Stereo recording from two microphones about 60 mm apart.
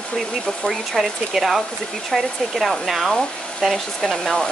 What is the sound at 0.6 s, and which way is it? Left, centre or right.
Speech, centre.